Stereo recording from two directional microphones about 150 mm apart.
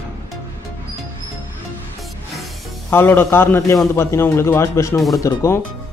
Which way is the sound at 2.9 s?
15° left (ahead or behind).